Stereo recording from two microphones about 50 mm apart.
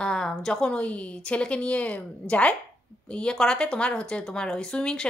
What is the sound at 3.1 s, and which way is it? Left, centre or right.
Speech, centre.